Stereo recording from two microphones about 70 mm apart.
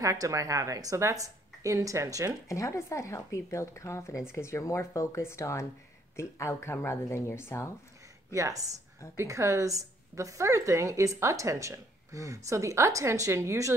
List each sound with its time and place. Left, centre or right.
0.0 s a woman's voice: right
2.4 s speech: left
8.3 s a woman's voice: right